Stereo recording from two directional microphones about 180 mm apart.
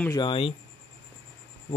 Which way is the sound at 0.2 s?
30° left (ahead or behind).